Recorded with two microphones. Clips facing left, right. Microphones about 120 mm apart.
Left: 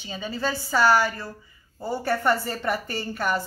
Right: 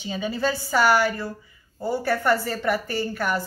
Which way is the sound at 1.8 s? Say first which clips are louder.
Right 1 dB; 5° right (ahead or behind).